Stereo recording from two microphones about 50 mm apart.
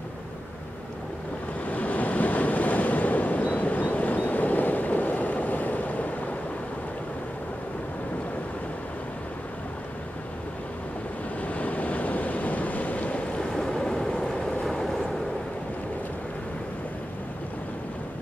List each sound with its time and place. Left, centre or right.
1.7 s waves: left
11.4 s waves: left
13.5 s vehicle: centre